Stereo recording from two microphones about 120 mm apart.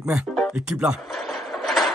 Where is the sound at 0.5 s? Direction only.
5° right (ahead or behind).